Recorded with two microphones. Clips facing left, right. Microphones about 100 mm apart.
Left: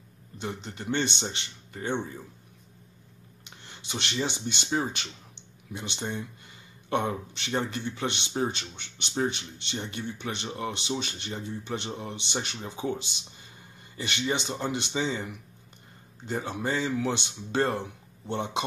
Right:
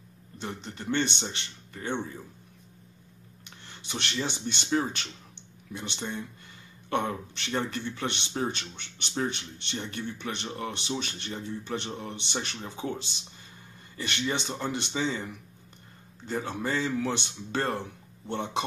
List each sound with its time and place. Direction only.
0.4 s speech: 15° left (ahead or behind)
3.4 s speech: 20° left (ahead or behind)